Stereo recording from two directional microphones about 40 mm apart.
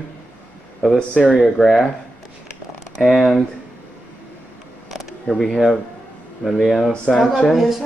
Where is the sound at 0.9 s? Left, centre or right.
Centre.